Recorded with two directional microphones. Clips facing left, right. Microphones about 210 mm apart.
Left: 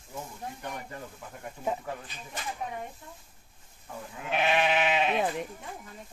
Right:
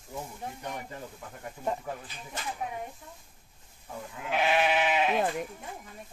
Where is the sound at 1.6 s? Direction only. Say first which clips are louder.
Even; 5° left (ahead or behind).